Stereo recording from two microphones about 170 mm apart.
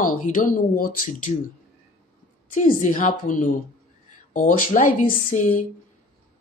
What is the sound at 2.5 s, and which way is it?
A woman's voice, 50° left (ahead or behind).